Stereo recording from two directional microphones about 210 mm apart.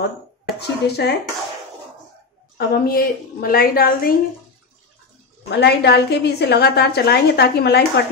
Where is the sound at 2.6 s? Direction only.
45° left (ahead or behind).